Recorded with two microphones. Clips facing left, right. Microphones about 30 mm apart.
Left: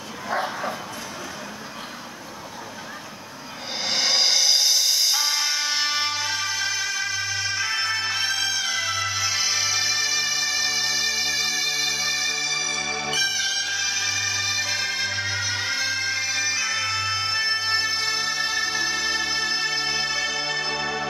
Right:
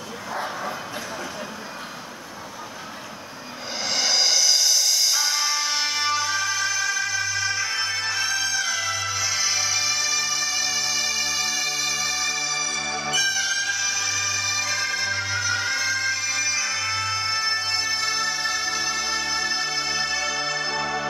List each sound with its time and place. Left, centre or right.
0.4 s bow-wow: centre
3.8 s music: left
13.1 s music: left